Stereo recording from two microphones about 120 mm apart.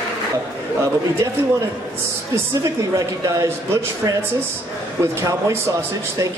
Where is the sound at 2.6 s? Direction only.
25° right (ahead or behind).